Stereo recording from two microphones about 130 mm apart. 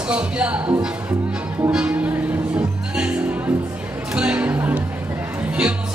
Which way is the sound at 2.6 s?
10° right (ahead or behind).